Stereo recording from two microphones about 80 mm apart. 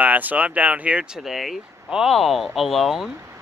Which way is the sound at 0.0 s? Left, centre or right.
Centre.